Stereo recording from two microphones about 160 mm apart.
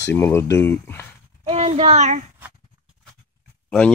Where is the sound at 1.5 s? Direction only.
40° right (ahead or behind).